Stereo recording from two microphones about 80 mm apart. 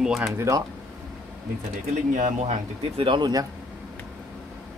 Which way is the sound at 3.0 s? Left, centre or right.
Right.